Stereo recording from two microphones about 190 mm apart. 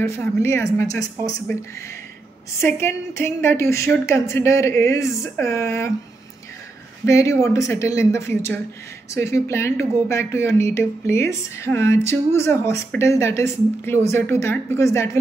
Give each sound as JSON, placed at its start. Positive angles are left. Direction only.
{"t": 0.0, "sound": "speech", "side_deg": 15}
{"t": 2.6, "sound": "speech", "side_deg": 15}
{"t": 7.1, "sound": "speech", "side_deg": 15}